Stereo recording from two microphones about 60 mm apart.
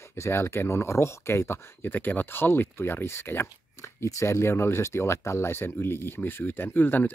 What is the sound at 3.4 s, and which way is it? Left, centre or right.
Speech, left.